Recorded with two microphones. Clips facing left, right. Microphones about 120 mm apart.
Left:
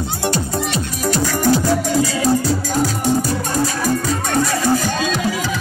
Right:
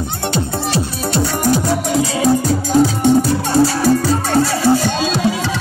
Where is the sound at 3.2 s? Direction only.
30° right (ahead or behind).